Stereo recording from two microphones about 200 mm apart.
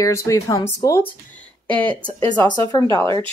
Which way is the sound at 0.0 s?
15° left (ahead or behind).